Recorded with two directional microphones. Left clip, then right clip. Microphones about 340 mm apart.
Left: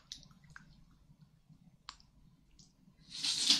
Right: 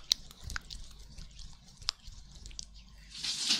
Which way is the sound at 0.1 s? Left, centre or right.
Right.